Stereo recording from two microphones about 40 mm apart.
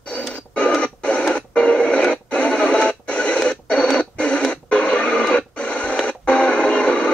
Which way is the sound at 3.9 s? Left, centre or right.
Left.